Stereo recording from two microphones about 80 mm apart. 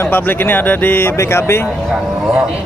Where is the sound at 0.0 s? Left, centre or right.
Left.